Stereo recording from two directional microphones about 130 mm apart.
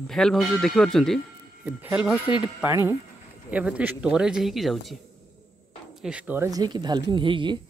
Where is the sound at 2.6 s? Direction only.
20° right (ahead or behind); by 4.9 s centre (ahead or behind).